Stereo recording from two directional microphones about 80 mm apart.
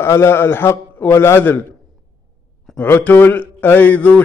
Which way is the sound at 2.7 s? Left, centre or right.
Left.